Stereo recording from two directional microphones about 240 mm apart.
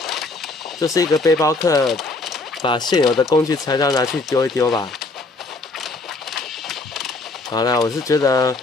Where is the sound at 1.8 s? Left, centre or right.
Centre.